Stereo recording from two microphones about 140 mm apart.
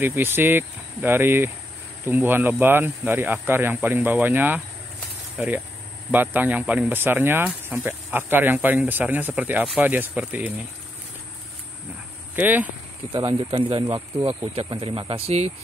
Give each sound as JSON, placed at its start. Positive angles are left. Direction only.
{"t": 0.0, "sound": "speech", "side_deg": -15}
{"t": 12.4, "sound": "speech", "side_deg": -15}
{"t": 13.1, "sound": "speech", "side_deg": -40}
{"t": 13.8, "sound": "speech", "side_deg": -25}
{"t": 14.5, "sound": "speech", "side_deg": -45}